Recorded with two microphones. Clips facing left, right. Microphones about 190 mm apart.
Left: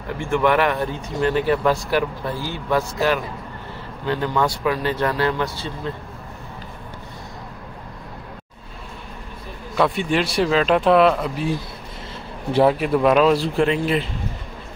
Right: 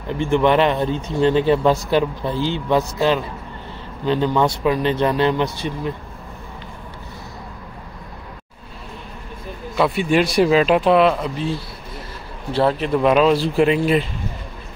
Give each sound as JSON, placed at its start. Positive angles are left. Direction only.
{"t": 0.1, "sound": "speech", "side_deg": -20}
{"t": 9.8, "sound": "speech", "side_deg": -5}